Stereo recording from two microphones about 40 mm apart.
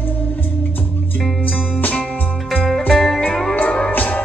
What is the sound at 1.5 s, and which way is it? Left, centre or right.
Music, left.